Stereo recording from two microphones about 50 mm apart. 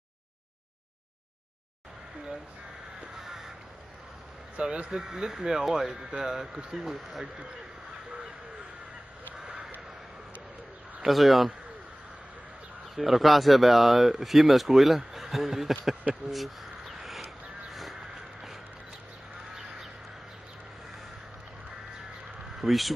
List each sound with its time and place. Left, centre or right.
3.2 s crow: centre
4.6 s speech: right
5.0 s speech: centre
9.4 s crow: right
11.1 s speech: centre
12.9 s speech: centre
16.3 s crow: centre
18.0 s a sound: centre
22.6 s speech: centre